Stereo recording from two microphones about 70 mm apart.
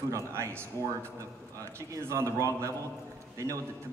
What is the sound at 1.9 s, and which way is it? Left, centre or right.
Speech, right.